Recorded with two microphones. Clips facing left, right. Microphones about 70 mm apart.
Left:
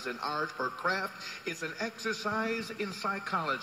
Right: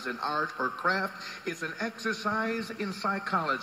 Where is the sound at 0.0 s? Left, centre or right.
Right.